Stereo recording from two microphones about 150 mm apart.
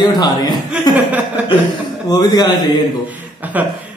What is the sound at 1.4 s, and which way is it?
Chuckle, 10° right (ahead or behind).